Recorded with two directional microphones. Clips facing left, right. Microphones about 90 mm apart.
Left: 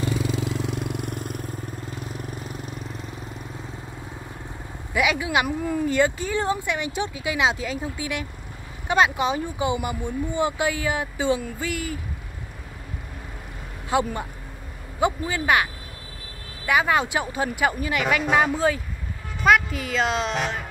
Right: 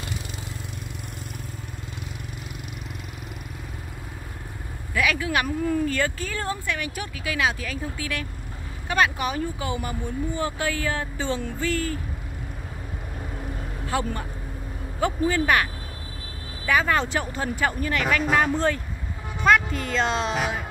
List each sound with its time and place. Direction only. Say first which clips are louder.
0.5 s vehicle: left 10 dB; 80° left; by 1.4 s 50° left (ahead or behind)
1.9 s vehicle: left 4 dB; 40° left (ahead or behind)
4.9 s speech: left 2 dB; 15° left (ahead or behind)
13.8 s a woman's voice: left 4 dB; 20° left (ahead or behind); by 20.6 s 5° right (ahead or behind)